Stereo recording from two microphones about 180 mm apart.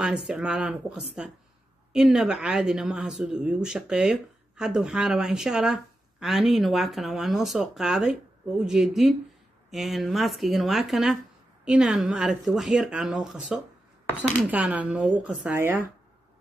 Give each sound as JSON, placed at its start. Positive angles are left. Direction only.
{"t": 0.3, "sound": "speech", "side_deg": -5}